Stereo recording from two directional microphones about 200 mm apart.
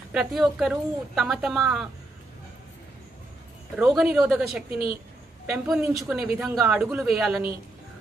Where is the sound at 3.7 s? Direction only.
5° right (ahead or behind).